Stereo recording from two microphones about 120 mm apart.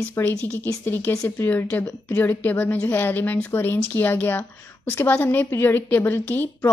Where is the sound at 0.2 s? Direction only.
20° left (ahead or behind).